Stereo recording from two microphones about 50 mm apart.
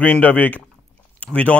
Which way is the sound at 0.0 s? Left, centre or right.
Left.